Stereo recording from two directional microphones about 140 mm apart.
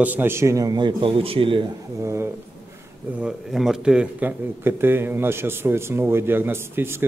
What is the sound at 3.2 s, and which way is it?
A man's voice, 5° right (ahead or behind).